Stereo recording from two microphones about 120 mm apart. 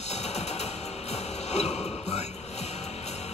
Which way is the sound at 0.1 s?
65° left (ahead or behind).